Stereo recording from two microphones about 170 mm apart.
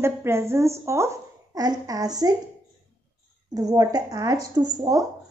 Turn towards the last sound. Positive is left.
turn(degrees=-20)  # may be behind; listen again after turning